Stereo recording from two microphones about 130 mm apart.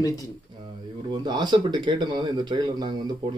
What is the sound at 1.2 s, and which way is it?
Speech, 35° right (ahead or behind).